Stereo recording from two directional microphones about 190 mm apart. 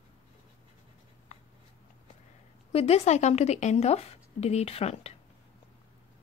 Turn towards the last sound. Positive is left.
turn(degrees=30)  # may be behind; listen again after turning